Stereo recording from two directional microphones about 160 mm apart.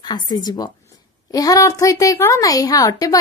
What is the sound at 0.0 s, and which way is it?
A woman's voice, 25° left (ahead or behind).